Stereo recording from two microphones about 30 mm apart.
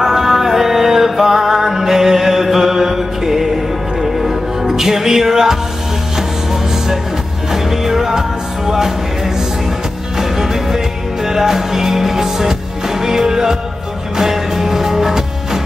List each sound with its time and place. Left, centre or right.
0.0 s music: centre
4.6 s music: centre